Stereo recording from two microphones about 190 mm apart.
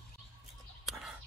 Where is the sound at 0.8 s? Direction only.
Centre (ahead or behind).